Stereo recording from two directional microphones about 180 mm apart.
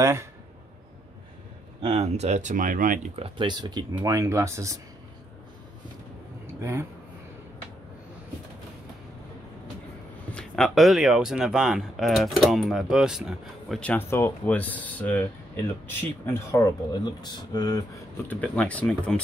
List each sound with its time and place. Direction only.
0.0 s speech: 15° right (ahead or behind)
1.8 s speech: 35° right (ahead or behind)
3.3 s speech: 25° right (ahead or behind)
6.6 s speech: 15° right (ahead or behind)
10.3 s speech: 5° left (ahead or behind); by 17.8 s 20° left (ahead or behind)
18.3 s speech: 10° left (ahead or behind)